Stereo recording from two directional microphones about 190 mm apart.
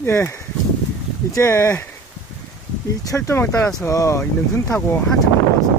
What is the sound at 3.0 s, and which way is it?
Speech, 15° left (ahead or behind).